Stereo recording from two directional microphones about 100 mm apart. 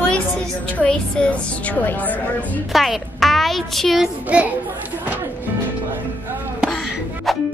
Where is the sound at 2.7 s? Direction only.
Centre (ahead or behind).